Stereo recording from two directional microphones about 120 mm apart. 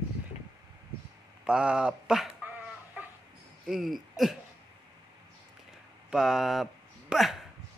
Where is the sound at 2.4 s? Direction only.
15° right (ahead or behind).